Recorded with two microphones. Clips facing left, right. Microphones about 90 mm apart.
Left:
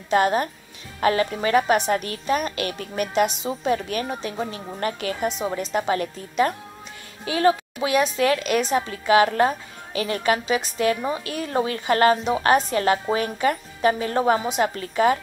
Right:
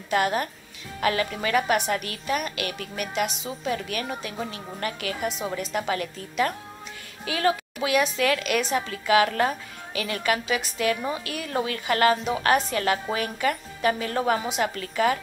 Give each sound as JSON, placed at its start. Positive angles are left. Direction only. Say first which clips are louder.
{"t": 0.1, "sound": "a woman's voice", "louder": "left 4 dB", "side_deg": 25}
{"t": 11.2, "sound": "a woman's voice", "louder": "left 4 dB", "side_deg": 30}
{"t": 12.3, "sound": "a woman's voice", "louder": "left 3 dB", "side_deg": 20}